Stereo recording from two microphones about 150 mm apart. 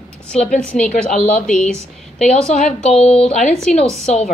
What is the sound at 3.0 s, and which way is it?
A woman's voice, 40° left (ahead or behind).